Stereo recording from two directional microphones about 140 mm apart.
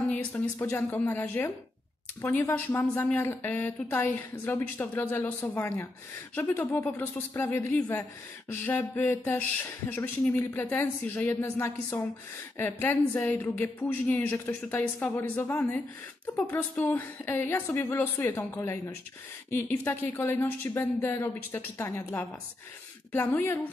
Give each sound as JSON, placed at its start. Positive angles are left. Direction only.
{"t": 0.1, "sound": "speech", "side_deg": 10}